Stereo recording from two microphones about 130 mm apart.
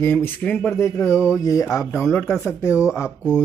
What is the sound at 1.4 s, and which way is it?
Speech, 25° left (ahead or behind).